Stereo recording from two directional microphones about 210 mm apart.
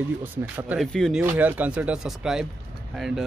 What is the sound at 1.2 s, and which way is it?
Speech, 10° right (ahead or behind).